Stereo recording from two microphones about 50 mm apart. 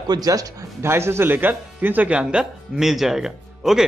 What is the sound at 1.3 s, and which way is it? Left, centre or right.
Speech, right.